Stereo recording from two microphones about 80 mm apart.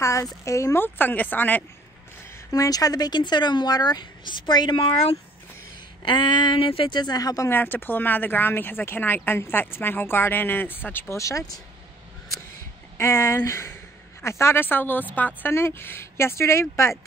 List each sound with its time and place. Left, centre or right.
0.0 s a sound: left
0.5 s speech: left
0.7 s speech: left
2.5 s speech: left
6.0 s speech: left
7.4 s speech: left
11.1 s speech: left
12.9 s speech: left
15.5 s speech: left